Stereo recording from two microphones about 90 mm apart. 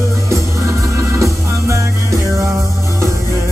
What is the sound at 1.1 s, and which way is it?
Music, 35° right (ahead or behind).